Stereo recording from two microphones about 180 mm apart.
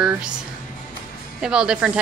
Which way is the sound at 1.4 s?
5° right (ahead or behind).